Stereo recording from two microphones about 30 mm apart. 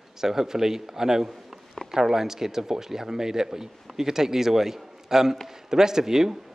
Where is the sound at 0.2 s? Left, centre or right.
Centre.